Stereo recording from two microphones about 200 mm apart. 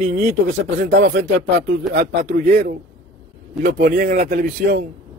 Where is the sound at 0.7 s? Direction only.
55° right (ahead or behind).